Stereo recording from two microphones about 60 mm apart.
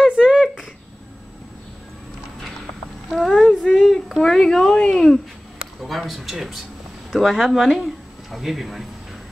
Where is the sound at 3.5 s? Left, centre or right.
Centre.